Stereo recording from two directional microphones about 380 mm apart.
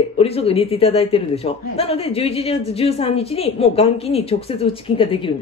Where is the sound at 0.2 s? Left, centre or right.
Centre.